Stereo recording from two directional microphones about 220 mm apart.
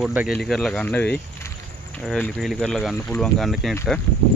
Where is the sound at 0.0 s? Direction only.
5° right (ahead or behind).